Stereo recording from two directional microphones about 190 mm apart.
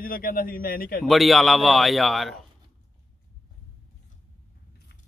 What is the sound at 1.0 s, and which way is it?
Speech, centre (ahead or behind).